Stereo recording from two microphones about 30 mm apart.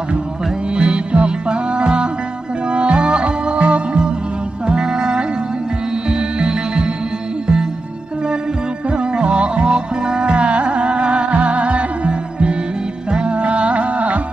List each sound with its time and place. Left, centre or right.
0.7 s music: right
4.6 s music: right
8.9 s music: right